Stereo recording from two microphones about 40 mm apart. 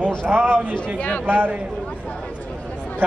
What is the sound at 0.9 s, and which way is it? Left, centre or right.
Speech, left.